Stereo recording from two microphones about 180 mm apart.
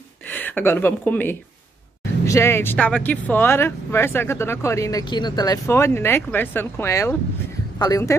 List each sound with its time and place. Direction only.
0.3 s a woman's voice: 10° left (ahead or behind)